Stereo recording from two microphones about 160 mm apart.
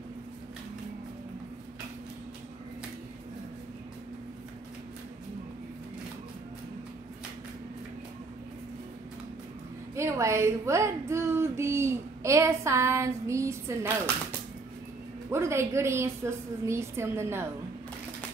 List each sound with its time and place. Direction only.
9.9 s speech: 20° right (ahead or behind)
15.3 s speech: 15° right (ahead or behind)